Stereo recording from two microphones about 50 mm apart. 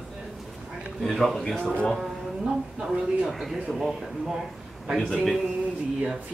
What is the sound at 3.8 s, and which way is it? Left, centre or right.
Speech, centre.